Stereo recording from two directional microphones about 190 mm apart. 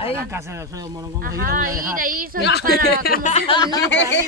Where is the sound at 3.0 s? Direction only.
50° left (ahead or behind).